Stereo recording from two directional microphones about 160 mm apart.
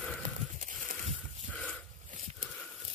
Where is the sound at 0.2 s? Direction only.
55° right (ahead or behind).